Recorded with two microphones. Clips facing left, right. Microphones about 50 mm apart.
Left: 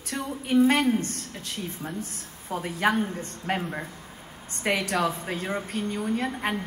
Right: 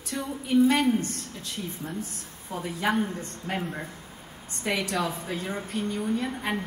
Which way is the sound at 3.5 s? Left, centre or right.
Left.